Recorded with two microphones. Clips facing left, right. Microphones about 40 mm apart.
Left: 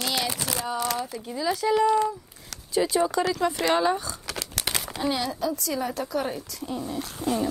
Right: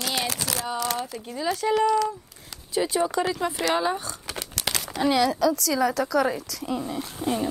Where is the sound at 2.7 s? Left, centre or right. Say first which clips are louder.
Left 1 dB; right.